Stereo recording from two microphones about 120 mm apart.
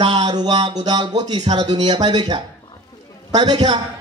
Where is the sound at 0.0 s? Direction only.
40° right (ahead or behind).